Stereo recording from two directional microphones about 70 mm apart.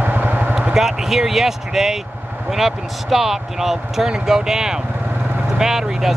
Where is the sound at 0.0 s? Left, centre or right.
Right.